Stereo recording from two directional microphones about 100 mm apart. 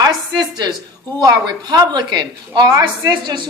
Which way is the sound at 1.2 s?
40° right (ahead or behind).